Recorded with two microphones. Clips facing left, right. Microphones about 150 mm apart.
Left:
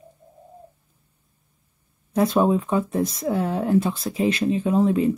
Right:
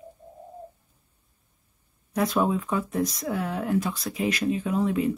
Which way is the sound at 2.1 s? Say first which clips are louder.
Left 5 dB; 30° left (ahead or behind).